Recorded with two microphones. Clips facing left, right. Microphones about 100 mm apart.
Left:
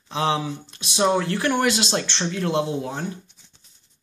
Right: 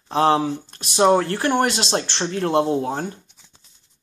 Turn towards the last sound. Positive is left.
turn(degrees=-45)  # may be behind; listen again after turning